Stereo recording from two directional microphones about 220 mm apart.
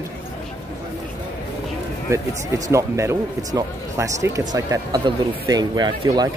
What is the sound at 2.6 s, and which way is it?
Speech, 15° right (ahead or behind).